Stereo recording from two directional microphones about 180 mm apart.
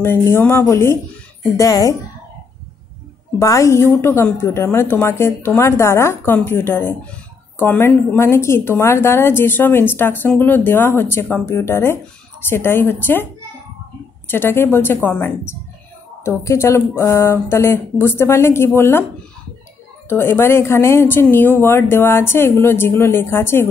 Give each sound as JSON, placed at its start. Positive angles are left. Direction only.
{"t": 0.0, "sound": "a woman's voice", "side_deg": 15}
{"t": 3.3, "sound": "a woman's voice", "side_deg": 15}
{"t": 20.1, "sound": "a woman's voice", "side_deg": 15}